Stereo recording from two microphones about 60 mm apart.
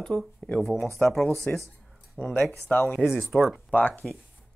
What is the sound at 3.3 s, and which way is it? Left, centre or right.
Speech, centre.